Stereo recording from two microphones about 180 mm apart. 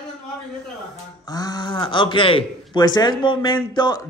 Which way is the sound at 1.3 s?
20° left (ahead or behind).